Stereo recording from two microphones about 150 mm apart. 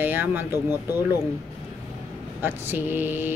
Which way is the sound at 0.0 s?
10° right (ahead or behind).